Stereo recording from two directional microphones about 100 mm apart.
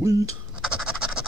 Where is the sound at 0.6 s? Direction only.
5° right (ahead or behind).